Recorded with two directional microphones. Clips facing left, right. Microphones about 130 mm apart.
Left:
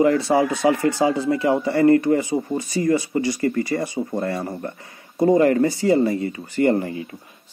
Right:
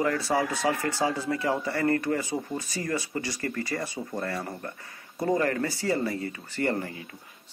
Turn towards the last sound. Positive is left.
turn(degrees=20)  # may be behind; listen again after turning